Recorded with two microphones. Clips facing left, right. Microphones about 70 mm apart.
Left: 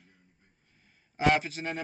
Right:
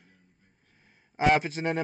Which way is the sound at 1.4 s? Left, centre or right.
Right.